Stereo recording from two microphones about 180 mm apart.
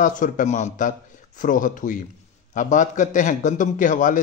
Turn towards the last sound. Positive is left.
turn(degrees=45)  # may be behind; listen again after turning